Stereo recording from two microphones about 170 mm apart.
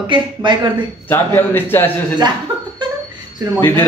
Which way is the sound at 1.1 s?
10° left (ahead or behind).